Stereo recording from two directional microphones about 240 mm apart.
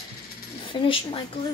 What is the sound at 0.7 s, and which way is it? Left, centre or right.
Speech, left.